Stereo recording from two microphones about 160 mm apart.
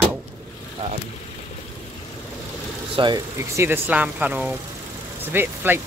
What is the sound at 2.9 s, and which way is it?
Speech, 30° right (ahead or behind).